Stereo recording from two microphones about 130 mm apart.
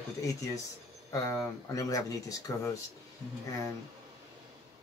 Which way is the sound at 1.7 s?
25° left (ahead or behind).